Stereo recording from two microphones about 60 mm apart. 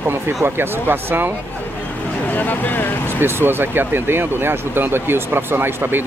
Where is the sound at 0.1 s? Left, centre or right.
Right.